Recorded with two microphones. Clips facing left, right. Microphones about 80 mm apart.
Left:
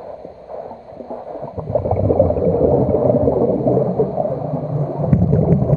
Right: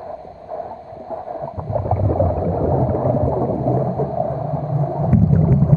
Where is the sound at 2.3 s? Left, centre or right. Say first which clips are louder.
Left 5 dB; right.